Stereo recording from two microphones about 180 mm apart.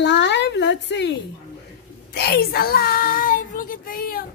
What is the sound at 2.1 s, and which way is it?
Child singing, 65° left (ahead or behind).